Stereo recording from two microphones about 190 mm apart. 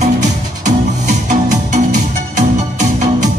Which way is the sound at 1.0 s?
40° right (ahead or behind).